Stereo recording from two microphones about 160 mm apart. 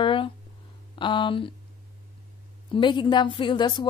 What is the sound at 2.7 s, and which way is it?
A woman's voice, 30° left (ahead or behind).